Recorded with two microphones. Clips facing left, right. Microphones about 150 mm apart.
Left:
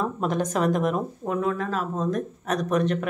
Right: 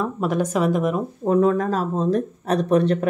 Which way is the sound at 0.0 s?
10° right (ahead or behind).